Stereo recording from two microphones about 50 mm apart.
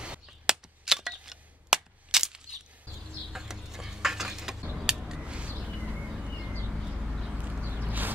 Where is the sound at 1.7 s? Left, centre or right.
Centre.